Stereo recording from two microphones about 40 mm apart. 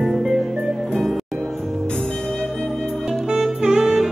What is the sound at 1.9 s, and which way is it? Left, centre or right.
Music, centre.